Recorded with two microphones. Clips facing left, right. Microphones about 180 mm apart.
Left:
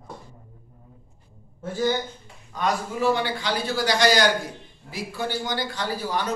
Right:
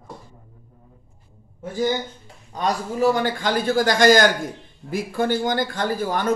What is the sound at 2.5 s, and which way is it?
A man's voice, 40° right (ahead or behind).